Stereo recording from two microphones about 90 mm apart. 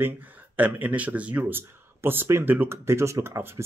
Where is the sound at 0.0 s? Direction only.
20° right (ahead or behind).